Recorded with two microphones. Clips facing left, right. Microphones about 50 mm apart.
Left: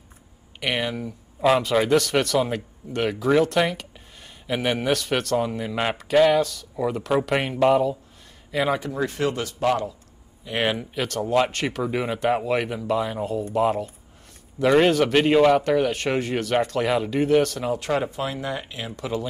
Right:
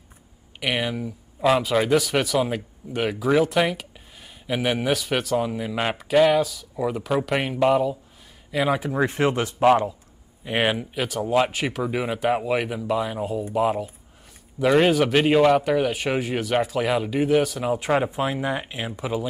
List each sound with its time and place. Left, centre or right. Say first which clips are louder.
0.6 s a man's voice: even; centre
8.9 s speech: right 3 dB; right
10.4 s speech: right 2 dB; centre